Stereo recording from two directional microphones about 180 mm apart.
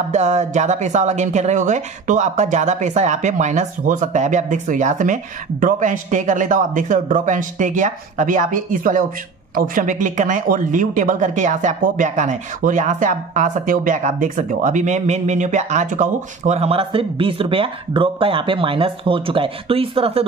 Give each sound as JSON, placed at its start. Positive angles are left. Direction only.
{"t": 0.1, "sound": "speech", "side_deg": -40}